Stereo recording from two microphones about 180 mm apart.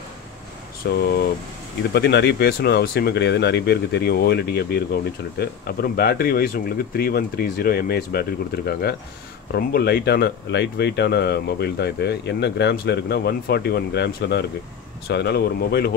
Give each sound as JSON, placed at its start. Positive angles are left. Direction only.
{"t": 0.9, "sound": "speech", "side_deg": 65}